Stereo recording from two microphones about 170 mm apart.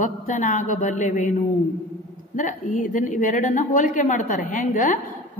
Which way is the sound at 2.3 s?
50° left (ahead or behind).